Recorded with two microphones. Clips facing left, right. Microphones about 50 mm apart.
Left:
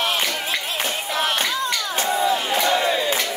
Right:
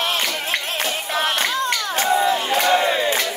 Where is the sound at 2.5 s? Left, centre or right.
Right.